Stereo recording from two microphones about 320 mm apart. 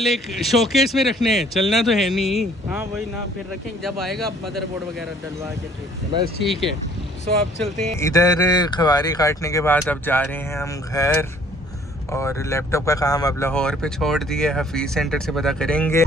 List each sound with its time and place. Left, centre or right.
0.0 s speech: centre
6.4 s speech: centre